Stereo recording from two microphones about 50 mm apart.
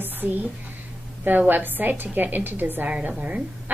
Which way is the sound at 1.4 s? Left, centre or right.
Right.